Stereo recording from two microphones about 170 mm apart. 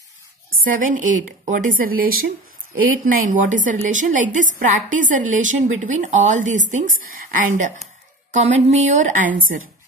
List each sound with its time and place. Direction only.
0.7 s a woman's voice: 50° right (ahead or behind)